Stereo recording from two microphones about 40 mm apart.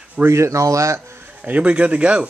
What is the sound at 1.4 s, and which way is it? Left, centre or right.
Speech, right.